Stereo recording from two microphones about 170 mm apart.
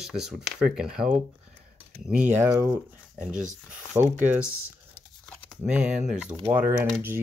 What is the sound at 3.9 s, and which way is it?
Speech, 25° right (ahead or behind).